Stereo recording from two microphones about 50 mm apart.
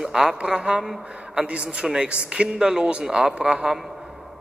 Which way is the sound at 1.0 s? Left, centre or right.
Right.